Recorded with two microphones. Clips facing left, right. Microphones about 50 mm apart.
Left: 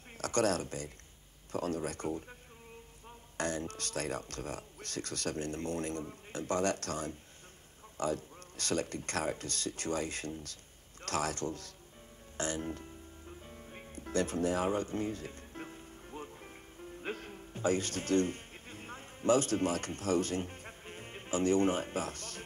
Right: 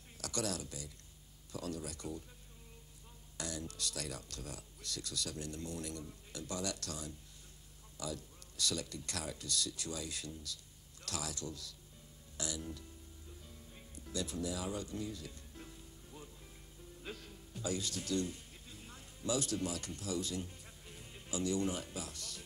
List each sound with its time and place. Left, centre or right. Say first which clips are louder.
0.2 s speech: left 9 dB; left
13.4 s music: left 7 dB; left